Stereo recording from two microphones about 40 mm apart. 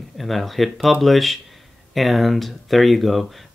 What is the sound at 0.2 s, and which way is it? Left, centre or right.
Speech, centre.